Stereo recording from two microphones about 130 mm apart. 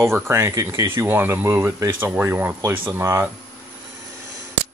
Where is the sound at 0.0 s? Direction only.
20° right (ahead or behind).